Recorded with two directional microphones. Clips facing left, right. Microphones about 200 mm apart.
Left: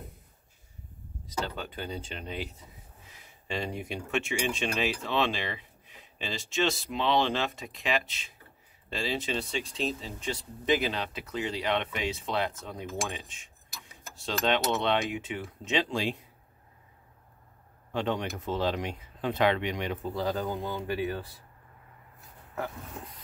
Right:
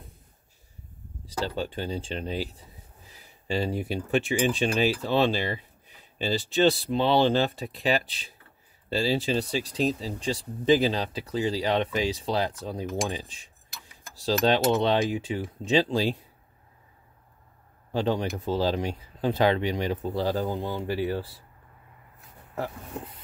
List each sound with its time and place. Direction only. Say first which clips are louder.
1.2 s speech: right 5 dB; 30° right (ahead or behind)
17.9 s speech: right 4 dB; 35° right (ahead or behind)
22.6 s speech: right 3 dB; 30° right (ahead or behind)